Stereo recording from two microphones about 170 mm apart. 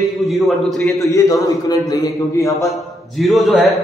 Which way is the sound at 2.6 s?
Centre (ahead or behind).